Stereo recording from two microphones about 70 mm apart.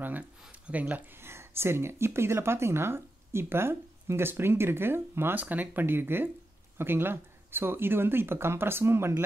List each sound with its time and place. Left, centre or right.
0.5 s speech: right
1.2 s speech: right